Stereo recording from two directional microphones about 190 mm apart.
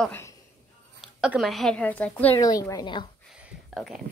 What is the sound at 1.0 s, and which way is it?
Speech, centre (ahead or behind).